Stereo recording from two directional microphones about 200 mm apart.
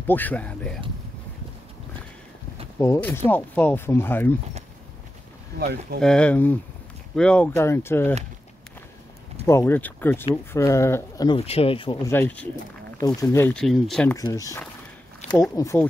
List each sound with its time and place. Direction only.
0.0 s speech: 10° left (ahead or behind)
2.8 s speech: 10° left (ahead or behind)
5.9 s speech: 5° left (ahead or behind)
9.5 s speech: 10° left (ahead or behind)
12.1 s speech: 10° left (ahead or behind)
14.1 s speech: 15° left (ahead or behind)